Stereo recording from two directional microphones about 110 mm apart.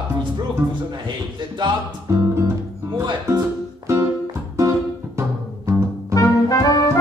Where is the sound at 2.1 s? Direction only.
25° right (ahead or behind).